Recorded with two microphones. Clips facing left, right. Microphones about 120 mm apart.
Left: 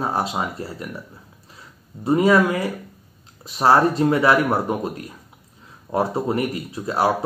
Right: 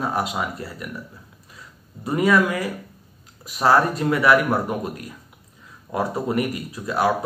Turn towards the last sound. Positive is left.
turn(degrees=30)  # may be behind; listen again after turning